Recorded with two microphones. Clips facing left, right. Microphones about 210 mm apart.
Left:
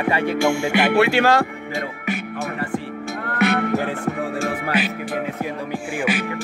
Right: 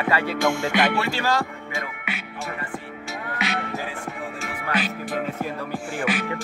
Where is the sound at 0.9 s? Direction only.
65° left (ahead or behind).